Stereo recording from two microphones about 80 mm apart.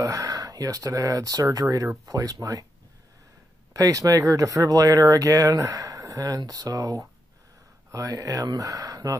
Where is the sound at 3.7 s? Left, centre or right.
Right.